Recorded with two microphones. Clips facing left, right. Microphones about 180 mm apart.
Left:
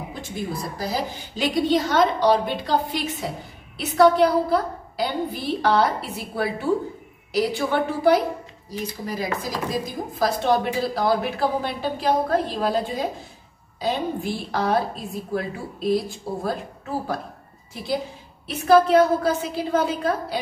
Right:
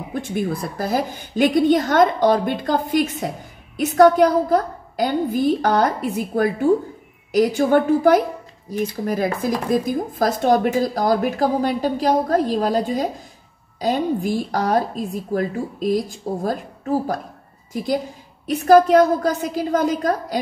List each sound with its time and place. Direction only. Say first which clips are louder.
0.1 s a woman's voice: right 9 dB; 60° right (ahead or behind); by 16.5 s 40° right (ahead or behind)
18.9 s speech: right 2 dB; 45° right (ahead or behind)